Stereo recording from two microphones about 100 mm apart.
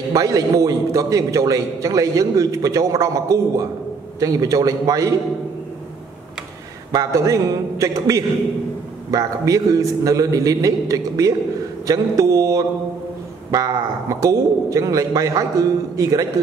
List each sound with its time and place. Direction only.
0.1 s a man's voice: 35° right (ahead or behind)
6.9 s a man's voice: 35° right (ahead or behind)
14.2 s a man's voice: 35° right (ahead or behind)